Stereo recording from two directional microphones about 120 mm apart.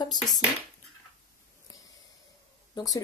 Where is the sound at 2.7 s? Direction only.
30° left (ahead or behind).